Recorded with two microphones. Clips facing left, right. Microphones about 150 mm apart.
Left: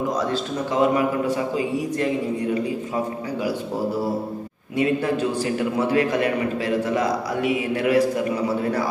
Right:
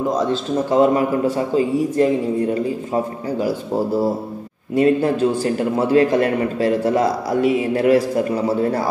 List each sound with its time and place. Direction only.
0.7 s a man's voice: 35° right (ahead or behind)
4.7 s a man's voice: 40° right (ahead or behind)